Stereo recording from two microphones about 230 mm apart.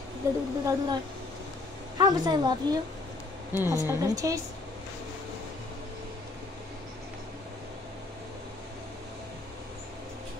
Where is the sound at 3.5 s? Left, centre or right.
Centre.